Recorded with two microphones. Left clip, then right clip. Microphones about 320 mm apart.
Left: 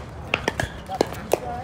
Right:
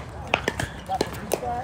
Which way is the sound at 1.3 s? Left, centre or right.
Left.